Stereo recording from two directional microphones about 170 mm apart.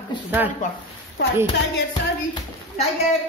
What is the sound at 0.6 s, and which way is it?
Speech, 50° left (ahead or behind).